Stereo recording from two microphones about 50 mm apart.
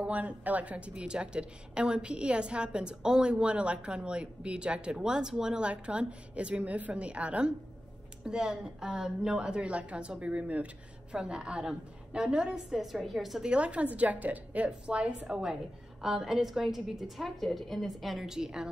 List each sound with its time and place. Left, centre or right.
0.0 s a woman's voice: right
12.7 s a woman's voice: centre
13.4 s a woman's voice: right
17.2 s a woman's voice: centre
18.3 s a woman's voice: centre